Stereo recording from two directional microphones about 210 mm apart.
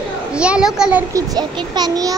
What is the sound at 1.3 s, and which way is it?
Speech, 20° right (ahead or behind).